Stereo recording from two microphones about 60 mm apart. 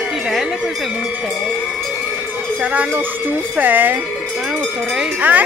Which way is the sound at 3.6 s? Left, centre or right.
Right.